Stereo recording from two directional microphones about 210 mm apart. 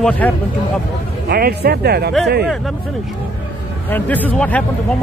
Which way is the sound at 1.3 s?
50° right (ahead or behind).